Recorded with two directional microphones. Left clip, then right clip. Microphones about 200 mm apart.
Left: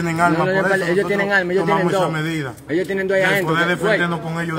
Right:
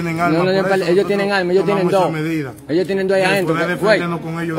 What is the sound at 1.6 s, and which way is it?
Speech, centre (ahead or behind).